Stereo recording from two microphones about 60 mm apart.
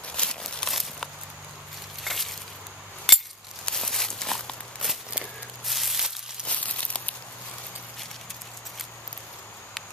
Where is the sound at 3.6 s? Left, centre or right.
Centre.